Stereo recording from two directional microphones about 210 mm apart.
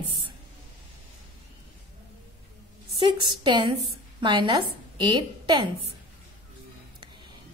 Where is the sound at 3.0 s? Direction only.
20° right (ahead or behind).